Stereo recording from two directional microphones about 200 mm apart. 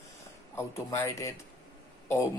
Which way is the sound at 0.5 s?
15° left (ahead or behind).